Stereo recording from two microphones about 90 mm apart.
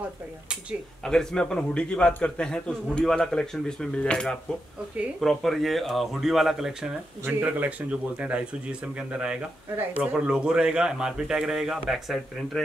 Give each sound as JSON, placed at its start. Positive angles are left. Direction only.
{"t": 1.0, "sound": "a man's voice", "side_deg": 5}
{"t": 7.2, "sound": "a man's voice", "side_deg": -20}